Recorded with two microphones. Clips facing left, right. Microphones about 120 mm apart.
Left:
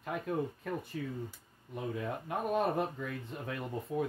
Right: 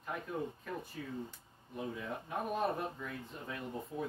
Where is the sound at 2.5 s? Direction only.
70° left (ahead or behind).